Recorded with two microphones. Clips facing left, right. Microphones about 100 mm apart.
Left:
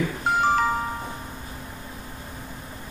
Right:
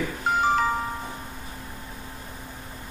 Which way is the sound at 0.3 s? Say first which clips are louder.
Left 1 dB; centre (ahead or behind).